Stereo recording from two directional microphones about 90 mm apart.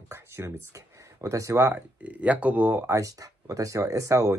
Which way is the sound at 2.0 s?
15° right (ahead or behind).